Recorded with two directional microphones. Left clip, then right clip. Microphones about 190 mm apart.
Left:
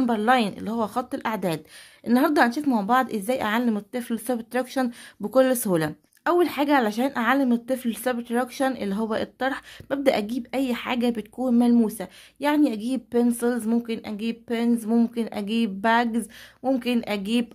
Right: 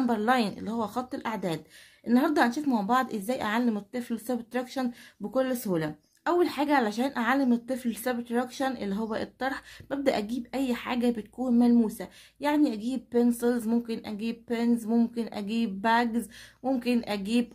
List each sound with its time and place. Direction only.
0.0 s a woman's voice: 25° left (ahead or behind); by 5.9 s 40° left (ahead or behind)
6.2 s a woman's voice: 30° left (ahead or behind)